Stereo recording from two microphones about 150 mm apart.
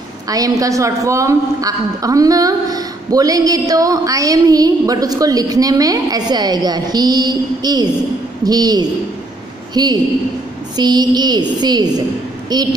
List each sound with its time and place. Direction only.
0.3 s a woman's voice: 25° right (ahead or behind)